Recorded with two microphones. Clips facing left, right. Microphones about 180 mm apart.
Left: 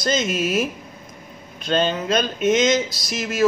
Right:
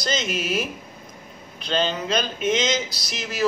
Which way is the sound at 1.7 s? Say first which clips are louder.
Left 3 dB; 50° left (ahead or behind).